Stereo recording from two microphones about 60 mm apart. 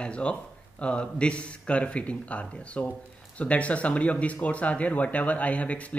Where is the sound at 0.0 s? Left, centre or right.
Centre.